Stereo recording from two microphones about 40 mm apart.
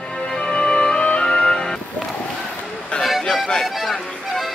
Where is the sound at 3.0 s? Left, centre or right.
Centre.